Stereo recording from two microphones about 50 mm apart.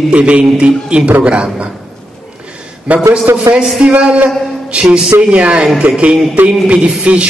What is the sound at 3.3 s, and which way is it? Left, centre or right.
Speech, right.